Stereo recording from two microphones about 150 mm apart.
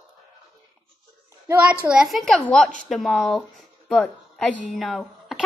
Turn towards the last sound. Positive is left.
turn(degrees=0)  # may be behind; listen again after turning